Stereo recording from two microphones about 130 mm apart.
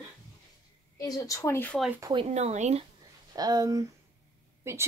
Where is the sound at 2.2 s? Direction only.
60° right (ahead or behind).